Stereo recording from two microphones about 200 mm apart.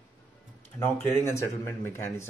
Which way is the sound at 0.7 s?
10° left (ahead or behind).